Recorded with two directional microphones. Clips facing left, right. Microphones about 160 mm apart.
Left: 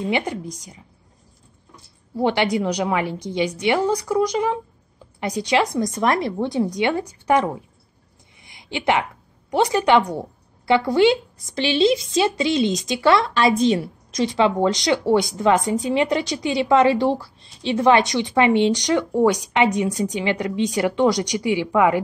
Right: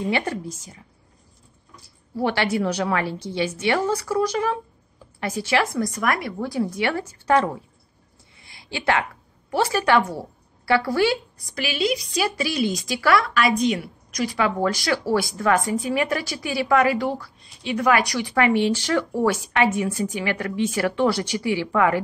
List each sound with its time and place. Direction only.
0.0 s a woman's voice: 15° left (ahead or behind)
2.1 s a woman's voice: 15° left (ahead or behind)
8.4 s a sound: 20° left (ahead or behind)
9.5 s a woman's voice: 20° left (ahead or behind)